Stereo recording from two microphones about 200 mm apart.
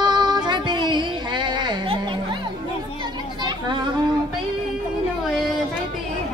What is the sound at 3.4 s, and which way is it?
Children playing, 20° right (ahead or behind).